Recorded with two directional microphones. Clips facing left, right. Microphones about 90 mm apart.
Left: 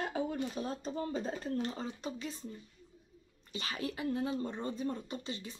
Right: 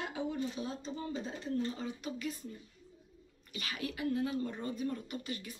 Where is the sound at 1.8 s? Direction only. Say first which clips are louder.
Even; 30° left (ahead or behind).